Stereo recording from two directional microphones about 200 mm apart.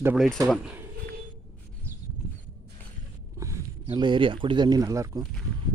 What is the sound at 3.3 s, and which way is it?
A man's voice, 20° right (ahead or behind).